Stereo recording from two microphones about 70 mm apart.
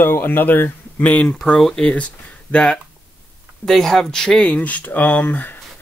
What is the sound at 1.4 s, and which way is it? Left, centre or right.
Speech, centre.